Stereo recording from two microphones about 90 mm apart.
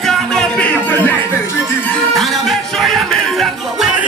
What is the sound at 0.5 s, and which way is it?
Music, 15° left (ahead or behind).